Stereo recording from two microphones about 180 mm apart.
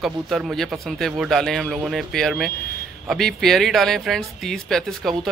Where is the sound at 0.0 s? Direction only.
Centre (ahead or behind).